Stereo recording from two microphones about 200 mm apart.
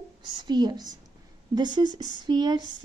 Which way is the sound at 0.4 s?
20° right (ahead or behind).